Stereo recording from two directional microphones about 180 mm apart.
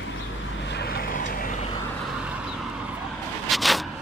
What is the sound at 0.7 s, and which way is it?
Vehicle, 60° left (ahead or behind).